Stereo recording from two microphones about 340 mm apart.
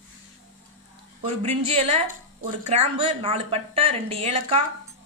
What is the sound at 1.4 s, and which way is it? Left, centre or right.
Speech, centre.